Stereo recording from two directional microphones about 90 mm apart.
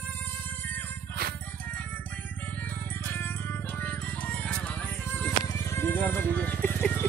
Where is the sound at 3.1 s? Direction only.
20° left (ahead or behind).